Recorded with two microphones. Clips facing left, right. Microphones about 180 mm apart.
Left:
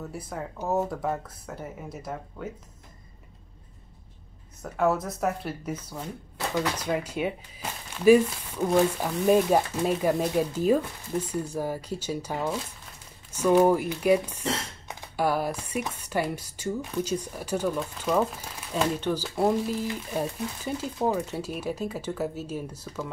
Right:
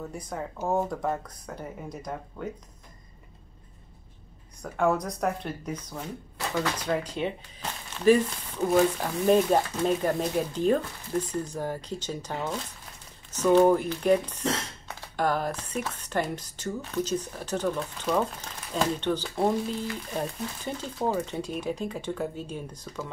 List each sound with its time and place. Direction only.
0.1 s speech: 5° left (ahead or behind)
4.6 s speech: 5° left (ahead or behind)